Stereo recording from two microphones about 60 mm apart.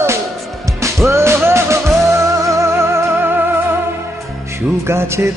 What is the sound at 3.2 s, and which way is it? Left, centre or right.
Music, right.